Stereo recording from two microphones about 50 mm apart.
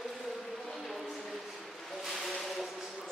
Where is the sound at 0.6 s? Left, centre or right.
Centre.